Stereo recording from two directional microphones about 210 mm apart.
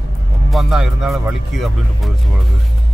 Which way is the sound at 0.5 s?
Centre (ahead or behind).